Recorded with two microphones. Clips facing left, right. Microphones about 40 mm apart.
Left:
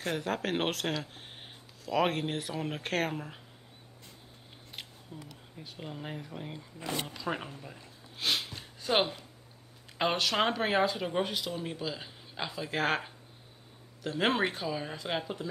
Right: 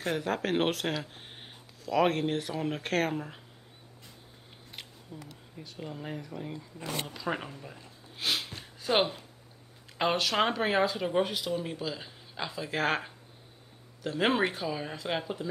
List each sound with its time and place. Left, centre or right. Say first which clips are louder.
0.1 s speech: right 3 dB; centre
5.1 s speech: right 2 dB; centre
6.2 s speech: right 3 dB; centre
7.2 s a sound: right 2 dB; centre
9.9 s speech: right 1 dB; centre